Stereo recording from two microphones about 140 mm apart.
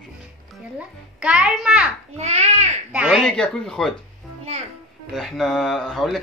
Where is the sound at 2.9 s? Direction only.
5° right (ahead or behind).